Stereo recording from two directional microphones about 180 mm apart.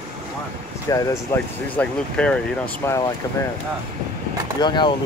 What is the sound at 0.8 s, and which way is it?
Speech, 20° left (ahead or behind).